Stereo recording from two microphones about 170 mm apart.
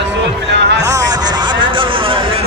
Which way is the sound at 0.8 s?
20° right (ahead or behind).